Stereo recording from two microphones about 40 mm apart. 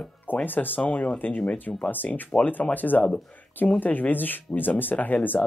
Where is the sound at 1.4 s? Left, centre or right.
Left.